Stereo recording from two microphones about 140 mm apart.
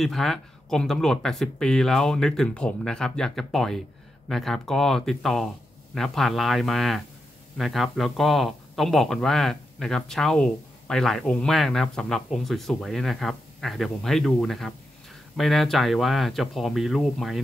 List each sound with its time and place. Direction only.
0.0 s a man's voice: centre (ahead or behind)